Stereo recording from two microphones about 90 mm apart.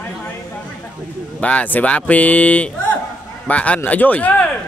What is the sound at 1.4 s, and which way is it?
Speech, 15° left (ahead or behind).